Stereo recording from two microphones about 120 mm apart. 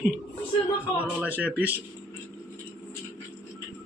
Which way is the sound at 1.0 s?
15° right (ahead or behind).